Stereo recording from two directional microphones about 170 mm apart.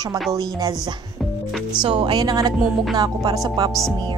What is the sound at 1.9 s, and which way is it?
Speech, 35° right (ahead or behind).